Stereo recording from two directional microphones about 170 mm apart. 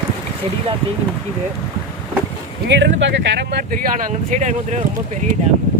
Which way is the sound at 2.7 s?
90° right.